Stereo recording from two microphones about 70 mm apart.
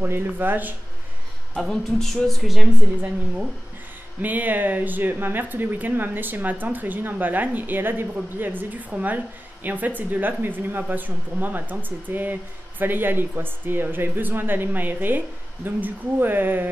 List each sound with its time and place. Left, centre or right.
0.0 s speech: right
1.6 s speech: centre
2.4 s a woman's voice: centre
4.2 s speech: right